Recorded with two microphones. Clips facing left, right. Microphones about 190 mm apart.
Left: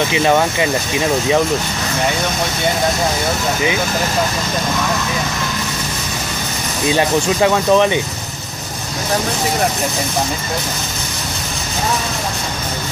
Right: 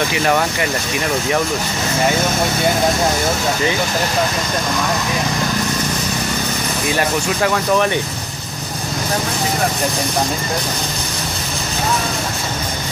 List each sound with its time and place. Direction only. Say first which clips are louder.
0.1 s speech: left 3 dB; 20° left (ahead or behind)
6.9 s speech: left 5 dB; 20° left (ahead or behind)